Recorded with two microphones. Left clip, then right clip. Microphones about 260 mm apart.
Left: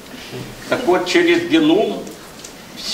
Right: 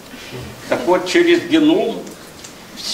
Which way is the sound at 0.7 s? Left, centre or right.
Right.